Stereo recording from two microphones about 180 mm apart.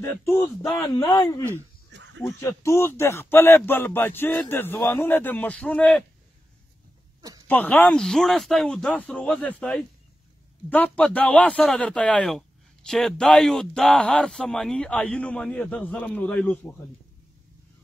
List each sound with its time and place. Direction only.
0.0 s speech: 15° left (ahead or behind)
0.7 s speech: 20° left (ahead or behind)
1.9 s a sound: 75° right (ahead or behind)
2.2 s speech: 15° left (ahead or behind)
7.2 s a sound: 20° right (ahead or behind)
7.4 s speech: 10° left (ahead or behind)